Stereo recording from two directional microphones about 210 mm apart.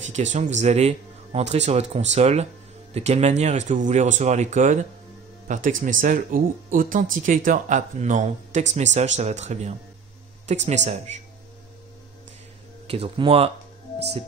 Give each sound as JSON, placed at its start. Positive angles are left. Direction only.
{"t": 0.0, "sound": "speech", "side_deg": -35}
{"t": 12.8, "sound": "speech", "side_deg": -30}